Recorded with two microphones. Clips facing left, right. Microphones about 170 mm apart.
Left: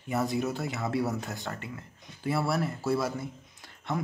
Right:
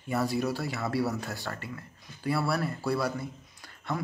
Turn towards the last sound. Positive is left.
turn(degrees=20)  # may be behind; listen again after turning